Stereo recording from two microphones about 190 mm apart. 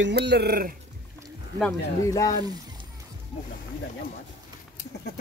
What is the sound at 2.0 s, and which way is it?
Speech, 20° left (ahead or behind).